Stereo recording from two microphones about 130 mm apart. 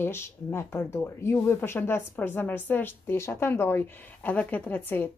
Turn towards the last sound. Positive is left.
turn(degrees=15)  # may be behind; listen again after turning